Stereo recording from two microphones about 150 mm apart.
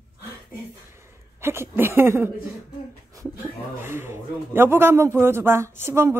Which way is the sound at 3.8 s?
15° right (ahead or behind).